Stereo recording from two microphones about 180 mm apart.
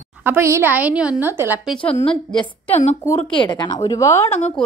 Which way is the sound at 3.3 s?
25° left (ahead or behind).